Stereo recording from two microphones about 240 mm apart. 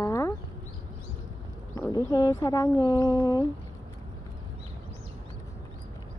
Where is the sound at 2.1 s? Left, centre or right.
Centre.